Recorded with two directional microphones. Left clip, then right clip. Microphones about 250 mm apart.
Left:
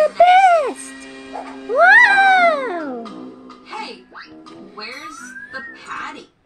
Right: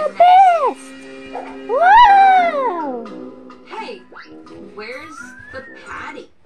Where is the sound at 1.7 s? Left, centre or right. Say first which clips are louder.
Right 2 dB; centre.